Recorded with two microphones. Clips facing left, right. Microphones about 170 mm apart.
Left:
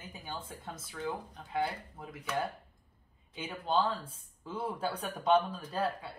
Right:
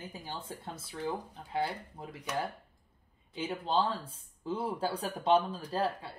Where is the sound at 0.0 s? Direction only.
30° right (ahead or behind).